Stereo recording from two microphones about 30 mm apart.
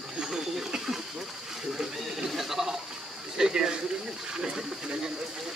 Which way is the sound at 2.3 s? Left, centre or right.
Centre.